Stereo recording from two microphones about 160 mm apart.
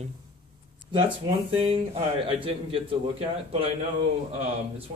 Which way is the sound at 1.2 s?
35° right (ahead or behind).